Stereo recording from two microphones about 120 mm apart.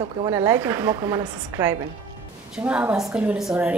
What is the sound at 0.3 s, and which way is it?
A woman's voice, 20° right (ahead or behind).